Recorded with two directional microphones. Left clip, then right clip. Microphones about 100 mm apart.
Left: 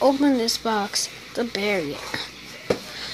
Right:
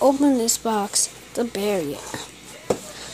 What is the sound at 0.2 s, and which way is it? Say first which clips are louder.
Speech: right 1 dB; 35° right (ahead or behind).